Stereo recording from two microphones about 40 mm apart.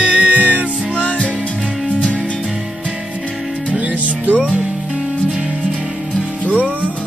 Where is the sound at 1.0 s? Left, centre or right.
Left.